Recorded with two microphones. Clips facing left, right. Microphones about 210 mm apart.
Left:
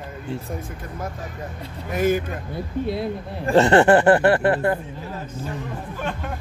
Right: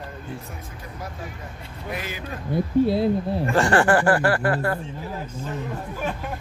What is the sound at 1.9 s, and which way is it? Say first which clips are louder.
Speech: left 14 dB; 50° left (ahead or behind).